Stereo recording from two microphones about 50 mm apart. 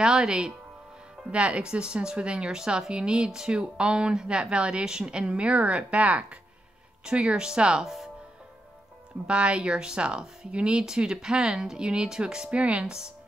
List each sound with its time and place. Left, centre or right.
0.0 s speech: centre
1.3 s speech: right
7.8 s speech: centre
9.3 s speech: right